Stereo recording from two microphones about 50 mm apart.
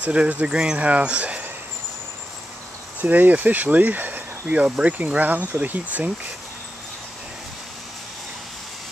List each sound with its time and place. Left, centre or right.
0.0 s speech: right
3.0 s speech: right
4.6 s speech: right
4.9 s speech: right